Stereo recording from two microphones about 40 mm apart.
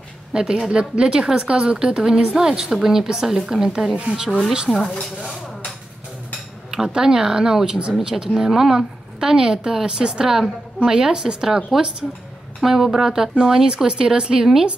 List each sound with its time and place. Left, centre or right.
0.3 s a woman's voice: centre
3.8 s speech: right
4.5 s a woman's voice: centre
6.7 s a woman's voice: centre